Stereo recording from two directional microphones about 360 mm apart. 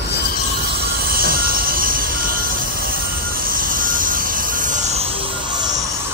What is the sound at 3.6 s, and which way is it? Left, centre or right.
Vehicle, right.